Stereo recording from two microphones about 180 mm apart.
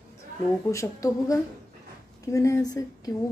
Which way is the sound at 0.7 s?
20° left (ahead or behind).